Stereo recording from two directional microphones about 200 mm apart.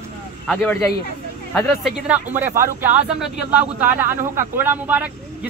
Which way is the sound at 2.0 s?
10° right (ahead or behind).